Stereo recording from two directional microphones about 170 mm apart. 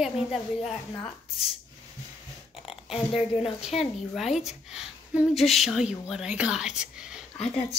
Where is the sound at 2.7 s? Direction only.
35° left (ahead or behind).